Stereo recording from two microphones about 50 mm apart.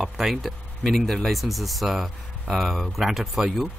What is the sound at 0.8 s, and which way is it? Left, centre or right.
Speech, centre.